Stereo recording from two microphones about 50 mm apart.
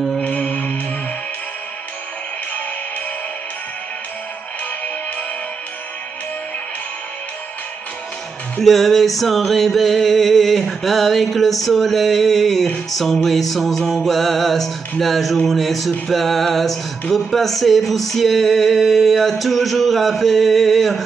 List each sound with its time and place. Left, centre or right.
0.2 s music: left
8.6 s music: centre